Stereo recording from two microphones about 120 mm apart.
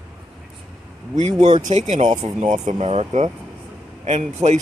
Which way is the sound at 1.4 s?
75° right (ahead or behind).